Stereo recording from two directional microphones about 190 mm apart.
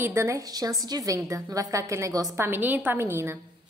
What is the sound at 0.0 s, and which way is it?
A woman's voice, 15° right (ahead or behind).